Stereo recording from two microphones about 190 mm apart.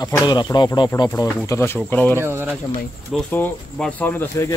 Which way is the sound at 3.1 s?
5° left (ahead or behind).